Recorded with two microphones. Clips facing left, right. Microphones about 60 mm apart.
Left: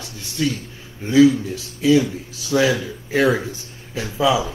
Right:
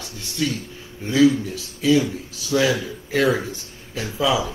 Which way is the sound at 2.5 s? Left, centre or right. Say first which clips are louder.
Left 2 dB; left.